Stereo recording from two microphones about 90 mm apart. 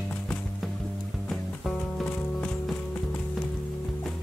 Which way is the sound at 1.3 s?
5° left (ahead or behind).